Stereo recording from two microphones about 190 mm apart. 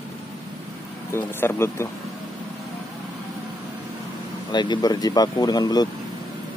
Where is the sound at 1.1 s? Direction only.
10° left (ahead or behind).